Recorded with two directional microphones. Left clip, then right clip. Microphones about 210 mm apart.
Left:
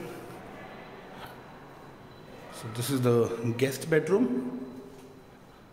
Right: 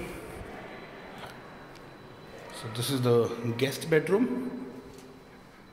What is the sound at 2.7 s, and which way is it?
A man's voice, 20° left (ahead or behind).